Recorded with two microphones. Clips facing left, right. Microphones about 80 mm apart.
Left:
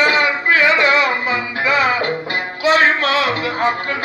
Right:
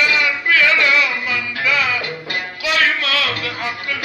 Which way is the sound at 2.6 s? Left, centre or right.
Left.